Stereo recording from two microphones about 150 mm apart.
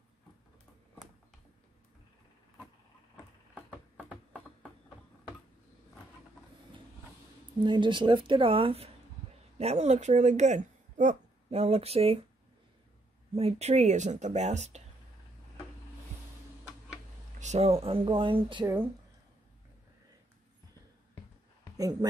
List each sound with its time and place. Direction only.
3.5 s a sound: 10° right (ahead or behind)
7.6 s speech: 30° right (ahead or behind)
13.3 s speech: 40° right (ahead or behind)
17.4 s speech: 50° right (ahead or behind); by 18.9 s 30° right (ahead or behind)